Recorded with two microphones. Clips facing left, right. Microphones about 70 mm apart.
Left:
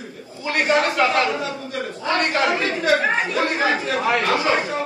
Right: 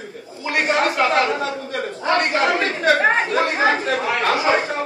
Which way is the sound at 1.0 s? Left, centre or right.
Right.